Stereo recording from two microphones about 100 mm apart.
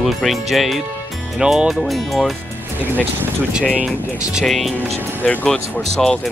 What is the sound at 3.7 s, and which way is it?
Speech, 5° right (ahead or behind).